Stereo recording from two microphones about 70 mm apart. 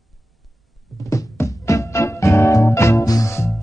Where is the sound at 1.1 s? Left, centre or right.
Left.